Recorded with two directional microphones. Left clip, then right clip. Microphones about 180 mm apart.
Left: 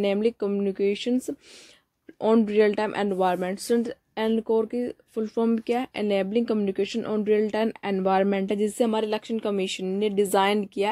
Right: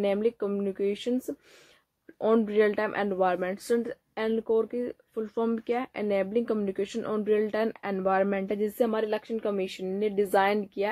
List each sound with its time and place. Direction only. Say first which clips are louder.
0.0 s speech: left 3 dB; 30° left (ahead or behind)